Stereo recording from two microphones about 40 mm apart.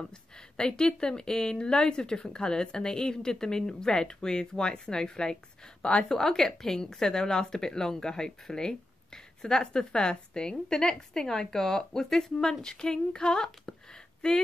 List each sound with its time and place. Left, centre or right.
0.6 s speech: centre